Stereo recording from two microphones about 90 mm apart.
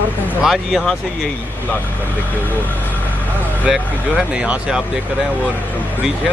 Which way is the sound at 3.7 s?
5° right (ahead or behind).